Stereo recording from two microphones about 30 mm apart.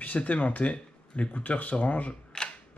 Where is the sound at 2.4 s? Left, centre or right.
Left.